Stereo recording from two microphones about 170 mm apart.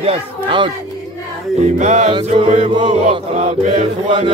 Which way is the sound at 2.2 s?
40° right (ahead or behind).